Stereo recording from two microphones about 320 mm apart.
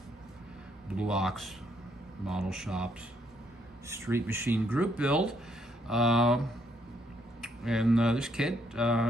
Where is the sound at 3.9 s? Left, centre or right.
Centre.